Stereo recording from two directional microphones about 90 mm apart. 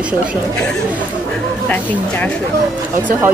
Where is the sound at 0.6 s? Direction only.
10° left (ahead or behind).